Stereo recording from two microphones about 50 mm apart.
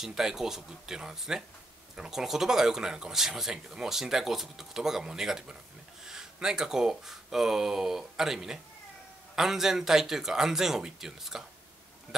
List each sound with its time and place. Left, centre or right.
0.0 s speech: centre